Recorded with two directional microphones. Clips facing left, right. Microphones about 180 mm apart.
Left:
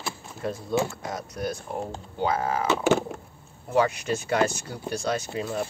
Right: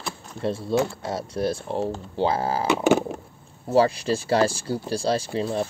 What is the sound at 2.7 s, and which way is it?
Speech, 15° right (ahead or behind).